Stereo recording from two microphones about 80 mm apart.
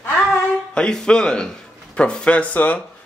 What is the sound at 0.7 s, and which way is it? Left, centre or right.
Speech, centre.